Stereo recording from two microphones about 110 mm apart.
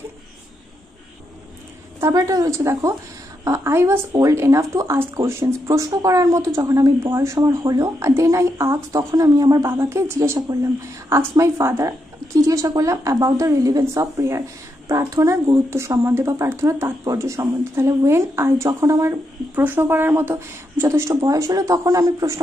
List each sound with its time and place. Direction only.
2.0 s speech: 25° right (ahead or behind)
19.5 s speech: 15° right (ahead or behind)
21.1 s speech: 35° right (ahead or behind)